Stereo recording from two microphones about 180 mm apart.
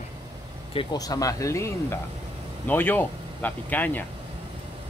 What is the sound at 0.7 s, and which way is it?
Speech, 20° left (ahead or behind).